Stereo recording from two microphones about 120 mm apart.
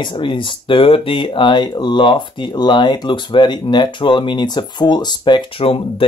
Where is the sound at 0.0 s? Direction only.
40° left (ahead or behind).